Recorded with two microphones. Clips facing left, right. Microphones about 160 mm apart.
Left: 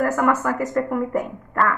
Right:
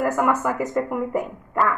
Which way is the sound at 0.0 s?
10° right (ahead or behind).